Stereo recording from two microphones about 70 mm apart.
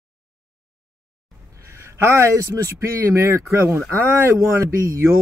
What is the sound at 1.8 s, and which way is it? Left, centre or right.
Speech, right.